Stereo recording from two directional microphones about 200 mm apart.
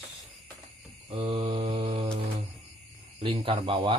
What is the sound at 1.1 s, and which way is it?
Mantra, 30° right (ahead or behind).